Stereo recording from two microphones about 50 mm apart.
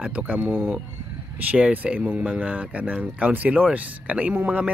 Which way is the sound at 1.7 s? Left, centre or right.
Right.